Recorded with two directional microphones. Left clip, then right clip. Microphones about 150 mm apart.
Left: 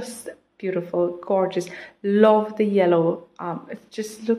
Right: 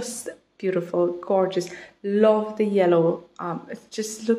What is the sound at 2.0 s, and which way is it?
Speech, 30° left (ahead or behind).